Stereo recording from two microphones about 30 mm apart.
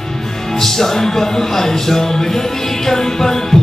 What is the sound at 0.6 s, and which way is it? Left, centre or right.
Speech, centre.